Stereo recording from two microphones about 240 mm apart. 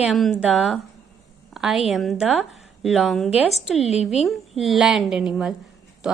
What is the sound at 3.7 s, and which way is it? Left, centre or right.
Speech, left.